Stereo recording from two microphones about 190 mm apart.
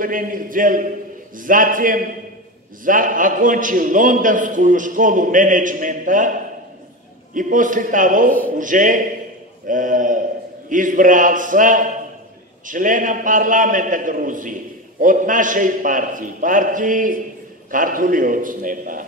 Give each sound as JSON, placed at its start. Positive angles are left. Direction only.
{"t": 0.0, "sound": "a man's voice", "side_deg": -45}
{"t": 7.3, "sound": "a man's voice", "side_deg": -45}